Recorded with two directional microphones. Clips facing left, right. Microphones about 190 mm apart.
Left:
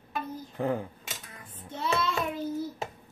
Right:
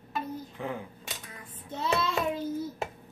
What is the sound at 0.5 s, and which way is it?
Speech, 45° left (ahead or behind).